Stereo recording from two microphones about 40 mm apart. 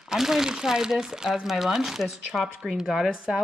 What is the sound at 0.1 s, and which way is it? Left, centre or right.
Speech, centre.